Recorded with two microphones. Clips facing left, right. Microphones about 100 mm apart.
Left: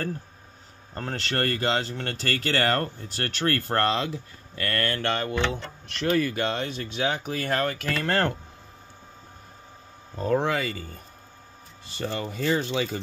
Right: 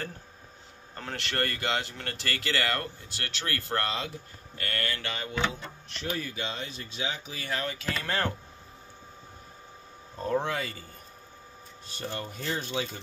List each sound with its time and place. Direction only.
0.9 s speech: 35° left (ahead or behind); by 5.3 s 50° left (ahead or behind)
5.9 s speech: 70° left (ahead or behind)
10.2 s speech: 90° left
11.8 s speech: 90° left